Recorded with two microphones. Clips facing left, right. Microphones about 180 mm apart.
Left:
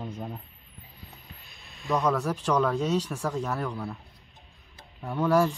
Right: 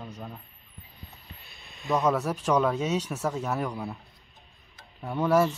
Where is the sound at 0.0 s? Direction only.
25° left (ahead or behind).